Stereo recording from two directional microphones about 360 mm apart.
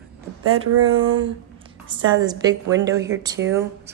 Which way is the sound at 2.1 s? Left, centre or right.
Centre.